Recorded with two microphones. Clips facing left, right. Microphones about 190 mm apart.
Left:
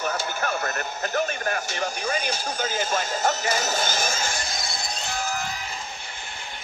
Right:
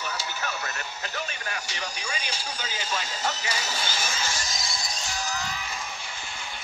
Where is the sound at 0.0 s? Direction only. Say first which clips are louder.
Left 6 dB; 50° left (ahead or behind).